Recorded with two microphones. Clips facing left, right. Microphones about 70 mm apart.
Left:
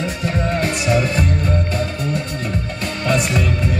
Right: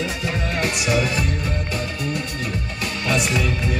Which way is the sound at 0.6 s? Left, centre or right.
Left.